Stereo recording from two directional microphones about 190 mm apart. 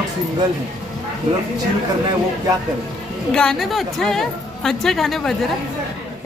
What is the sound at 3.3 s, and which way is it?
A woman's voice, 5° left (ahead or behind).